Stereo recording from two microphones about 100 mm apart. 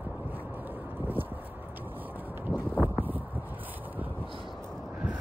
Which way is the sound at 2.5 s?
20° right (ahead or behind).